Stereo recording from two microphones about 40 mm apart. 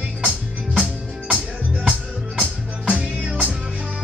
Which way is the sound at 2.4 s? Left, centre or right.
Right.